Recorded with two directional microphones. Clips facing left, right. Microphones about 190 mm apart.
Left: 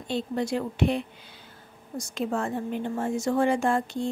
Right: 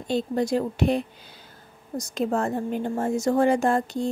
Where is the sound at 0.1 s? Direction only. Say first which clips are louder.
Right 4 dB; 40° right (ahead or behind).